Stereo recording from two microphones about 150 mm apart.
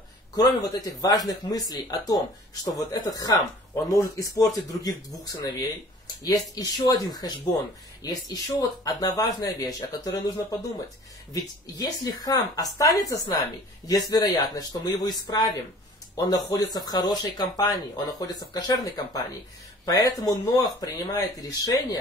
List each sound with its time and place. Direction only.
0.3 s speech: 25° left (ahead or behind)
16.7 s speech: 25° left (ahead or behind)